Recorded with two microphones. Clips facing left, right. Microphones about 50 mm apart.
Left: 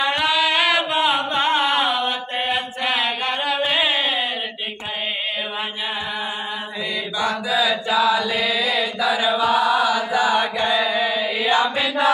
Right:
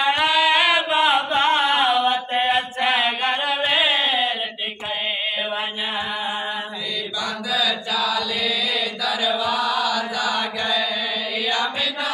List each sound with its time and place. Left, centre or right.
0.0 s chant: centre
1.6 s mantra: centre
7.2 s mantra: left
8.7 s chant: left